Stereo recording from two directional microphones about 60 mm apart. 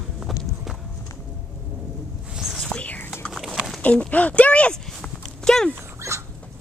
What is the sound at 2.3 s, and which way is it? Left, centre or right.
Whispering, centre.